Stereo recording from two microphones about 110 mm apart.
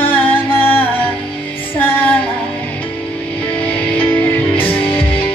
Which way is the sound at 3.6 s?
15° left (ahead or behind).